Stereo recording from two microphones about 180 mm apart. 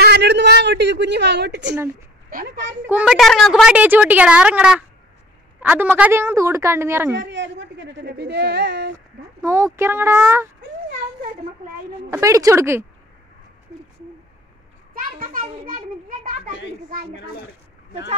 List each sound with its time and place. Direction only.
0.0 s a sound: 65° right (ahead or behind)
2.2 s a sound: 55° right (ahead or behind)
2.9 s a woman's voice: 5° right (ahead or behind)
7.2 s a woman's voice: 85° right
9.4 s a woman's voice: 15° right (ahead or behind)
12.1 s a woman's voice: 20° right (ahead or behind)
15.0 s a child's voice: 50° right (ahead or behind)